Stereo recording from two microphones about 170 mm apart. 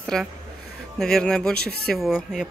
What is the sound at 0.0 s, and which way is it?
Speech, 5° left (ahead or behind).